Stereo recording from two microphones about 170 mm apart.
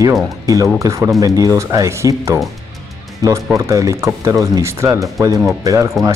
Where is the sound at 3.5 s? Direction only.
20° right (ahead or behind).